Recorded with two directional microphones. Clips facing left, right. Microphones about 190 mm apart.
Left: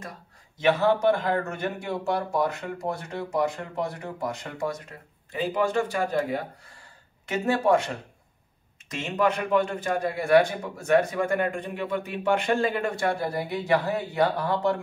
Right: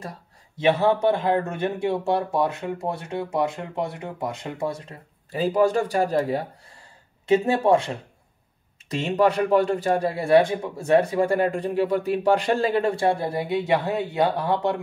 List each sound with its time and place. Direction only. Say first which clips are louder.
0.6 s a man's voice: right 2 dB; 25° right (ahead or behind)